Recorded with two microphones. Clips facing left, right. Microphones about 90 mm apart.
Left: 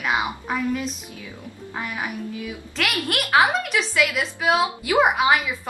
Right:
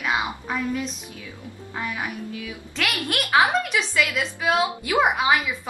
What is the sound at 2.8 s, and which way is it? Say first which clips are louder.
A woman's voice: left 1 dB; centre (ahead or behind).